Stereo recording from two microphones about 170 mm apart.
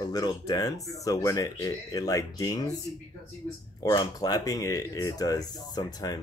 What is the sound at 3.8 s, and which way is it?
Speech, 25° left (ahead or behind).